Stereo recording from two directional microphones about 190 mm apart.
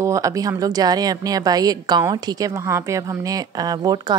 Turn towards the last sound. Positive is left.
turn(degrees=-20)  # may be behind; listen again after turning